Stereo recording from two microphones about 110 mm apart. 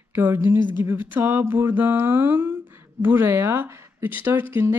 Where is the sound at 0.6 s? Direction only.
45° left (ahead or behind).